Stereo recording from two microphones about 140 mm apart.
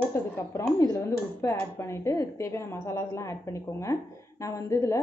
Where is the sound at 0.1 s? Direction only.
20° left (ahead or behind).